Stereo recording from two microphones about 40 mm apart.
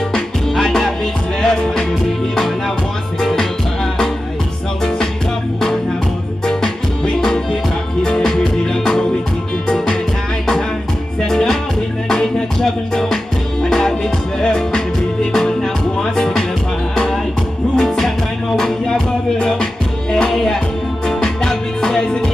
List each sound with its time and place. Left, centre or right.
0.1 s music: centre
3.2 s music: centre
6.4 s music: centre
11.1 s music: centre
17.7 s music: centre